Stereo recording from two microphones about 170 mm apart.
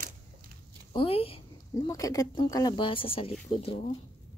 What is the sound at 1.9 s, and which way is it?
Speech, 20° left (ahead or behind).